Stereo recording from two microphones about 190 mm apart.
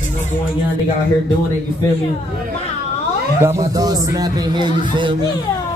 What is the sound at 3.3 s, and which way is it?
Speech, 15° right (ahead or behind).